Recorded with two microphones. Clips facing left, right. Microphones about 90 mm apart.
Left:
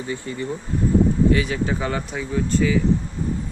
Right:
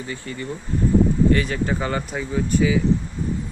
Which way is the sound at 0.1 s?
20° left (ahead or behind).